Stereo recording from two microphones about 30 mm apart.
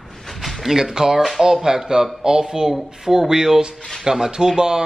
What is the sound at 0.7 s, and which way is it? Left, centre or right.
Speech, centre.